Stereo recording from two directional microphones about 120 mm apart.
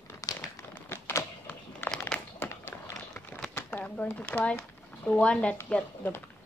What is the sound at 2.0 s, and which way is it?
Crumpling, 15° left (ahead or behind).